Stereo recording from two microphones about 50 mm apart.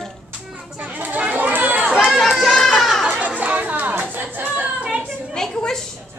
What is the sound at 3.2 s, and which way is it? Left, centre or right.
Music, right.